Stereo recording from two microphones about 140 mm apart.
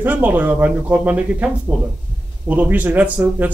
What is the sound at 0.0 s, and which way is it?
A man's voice, 10° right (ahead or behind).